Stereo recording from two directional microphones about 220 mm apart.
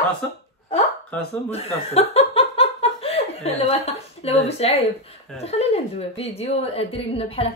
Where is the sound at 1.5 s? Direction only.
30° left (ahead or behind).